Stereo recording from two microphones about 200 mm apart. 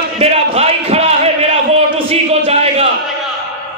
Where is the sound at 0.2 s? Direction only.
30° right (ahead or behind).